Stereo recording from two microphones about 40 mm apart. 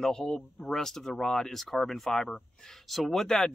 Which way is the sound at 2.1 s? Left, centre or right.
Centre.